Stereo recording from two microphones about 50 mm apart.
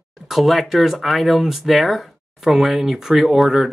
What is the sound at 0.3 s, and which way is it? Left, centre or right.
Speech, centre.